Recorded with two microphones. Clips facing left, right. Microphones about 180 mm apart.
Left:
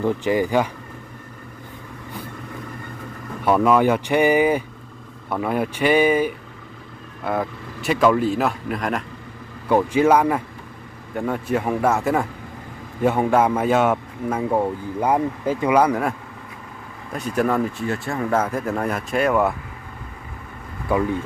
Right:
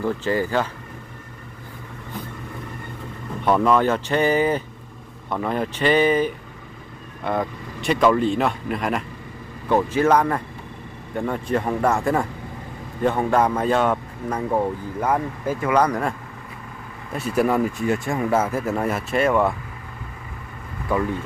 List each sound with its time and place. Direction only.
0.0 s a man's voice: 15° left (ahead or behind)
3.4 s a man's voice: 5° left (ahead or behind)
9.7 s a man's voice: 10° left (ahead or behind)
15.8 s a man's voice: 5° left (ahead or behind)
17.1 s speech: 5° right (ahead or behind)